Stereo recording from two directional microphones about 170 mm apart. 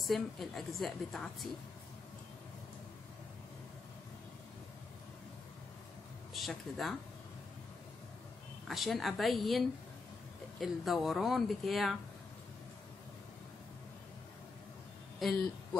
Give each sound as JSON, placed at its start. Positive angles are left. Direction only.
{"t": 0.0, "sound": "a woman's voice", "side_deg": 0}
{"t": 6.3, "sound": "speech", "side_deg": 0}
{"t": 8.6, "sound": "a woman's voice", "side_deg": 0}
{"t": 15.1, "sound": "speech", "side_deg": 0}